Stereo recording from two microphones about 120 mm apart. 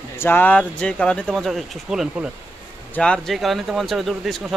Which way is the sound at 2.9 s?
5° left (ahead or behind).